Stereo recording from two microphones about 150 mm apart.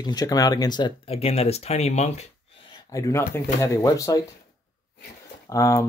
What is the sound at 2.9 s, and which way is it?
Speech, 20° left (ahead or behind).